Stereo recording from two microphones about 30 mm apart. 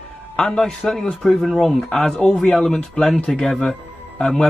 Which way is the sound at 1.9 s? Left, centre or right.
Left.